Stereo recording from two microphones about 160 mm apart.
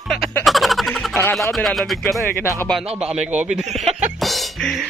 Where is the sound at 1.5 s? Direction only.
Centre (ahead or behind).